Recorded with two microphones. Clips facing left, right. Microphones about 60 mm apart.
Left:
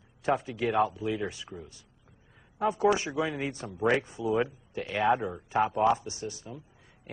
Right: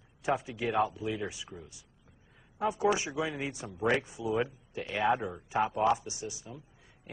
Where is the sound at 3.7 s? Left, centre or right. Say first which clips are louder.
Left 3 dB; centre.